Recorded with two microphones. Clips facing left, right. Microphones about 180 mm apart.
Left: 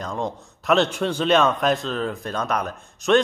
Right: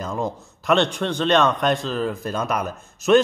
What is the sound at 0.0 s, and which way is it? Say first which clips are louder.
A man's voice: right 1 dB; 5° right (ahead or behind).